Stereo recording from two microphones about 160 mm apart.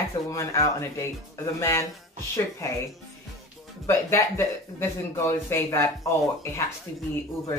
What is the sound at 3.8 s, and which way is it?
Speech, 15° left (ahead or behind).